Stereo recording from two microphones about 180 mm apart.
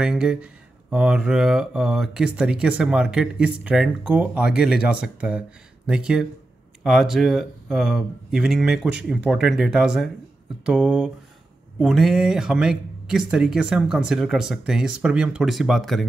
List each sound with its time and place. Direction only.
0.0 s speech: 5° right (ahead or behind)